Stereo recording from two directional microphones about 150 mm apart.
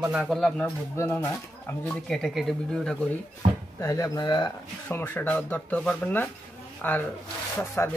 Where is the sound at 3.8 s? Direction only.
20° left (ahead or behind).